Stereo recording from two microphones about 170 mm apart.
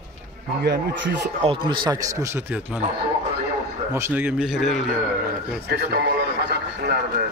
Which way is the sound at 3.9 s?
15° right (ahead or behind).